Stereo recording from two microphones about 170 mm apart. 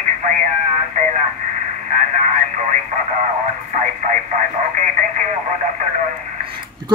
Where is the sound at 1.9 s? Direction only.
45° right (ahead or behind).